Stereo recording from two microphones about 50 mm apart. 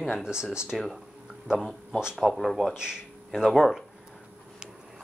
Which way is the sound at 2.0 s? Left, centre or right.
Centre.